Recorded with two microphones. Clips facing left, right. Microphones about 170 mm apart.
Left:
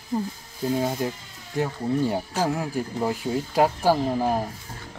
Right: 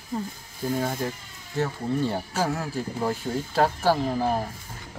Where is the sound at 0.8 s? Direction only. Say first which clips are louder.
Left 2 dB; 10° left (ahead or behind).